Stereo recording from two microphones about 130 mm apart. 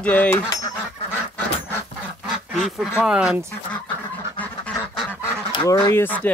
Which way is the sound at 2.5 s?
Centre (ahead or behind).